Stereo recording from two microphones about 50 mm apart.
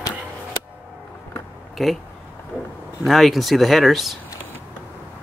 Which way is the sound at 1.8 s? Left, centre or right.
Centre.